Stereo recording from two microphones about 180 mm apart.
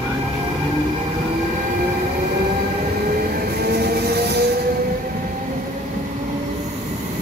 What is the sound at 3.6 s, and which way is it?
Train, 60° right (ahead or behind).